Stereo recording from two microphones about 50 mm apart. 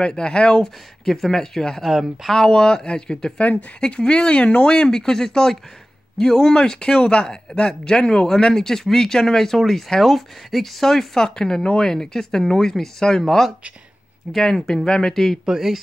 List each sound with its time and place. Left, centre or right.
0.0 s speech: centre
1.9 s speech: centre
2.3 s speech: centre
15.4 s speech: centre